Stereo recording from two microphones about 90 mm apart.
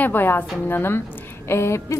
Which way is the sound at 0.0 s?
20° left (ahead or behind).